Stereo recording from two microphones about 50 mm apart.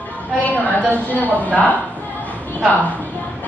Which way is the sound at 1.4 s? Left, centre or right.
Left.